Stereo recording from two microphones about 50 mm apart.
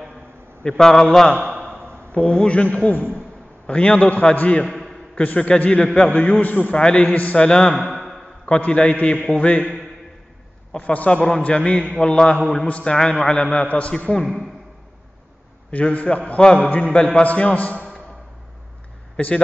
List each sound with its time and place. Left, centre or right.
0.7 s a man's voice: centre
2.1 s a man's voice: left
5.7 s a man's voice: centre
6.0 s a man's voice: left
7.8 s a sound: centre
8.5 s a man's voice: left
10.8 s a man's voice: left
14.2 s a man's voice: centre
15.7 s a man's voice: left
19.1 s speech: left